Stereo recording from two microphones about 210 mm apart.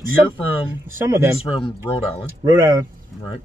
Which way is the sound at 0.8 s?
10° right (ahead or behind).